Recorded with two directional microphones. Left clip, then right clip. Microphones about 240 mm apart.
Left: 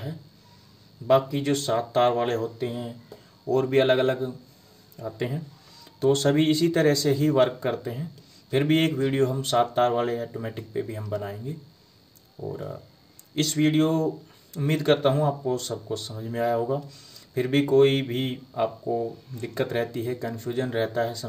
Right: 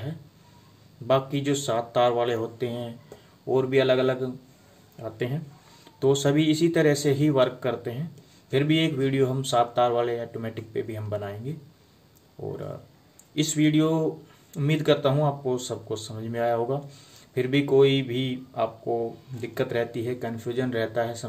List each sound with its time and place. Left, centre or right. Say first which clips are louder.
1.0 s speech: left 2 dB; centre